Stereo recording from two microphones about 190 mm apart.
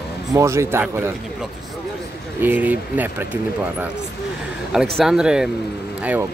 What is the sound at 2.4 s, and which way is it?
Speech, 10° right (ahead or behind).